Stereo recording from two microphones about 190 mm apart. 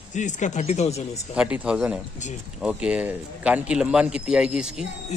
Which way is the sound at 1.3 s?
5° right (ahead or behind).